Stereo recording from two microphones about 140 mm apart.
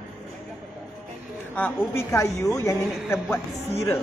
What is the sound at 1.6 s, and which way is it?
A woman's voice, 15° left (ahead or behind).